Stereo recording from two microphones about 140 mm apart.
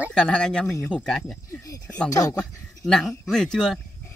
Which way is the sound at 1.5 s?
20° left (ahead or behind).